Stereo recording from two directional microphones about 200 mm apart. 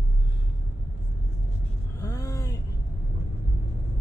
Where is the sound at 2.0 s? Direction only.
15° left (ahead or behind).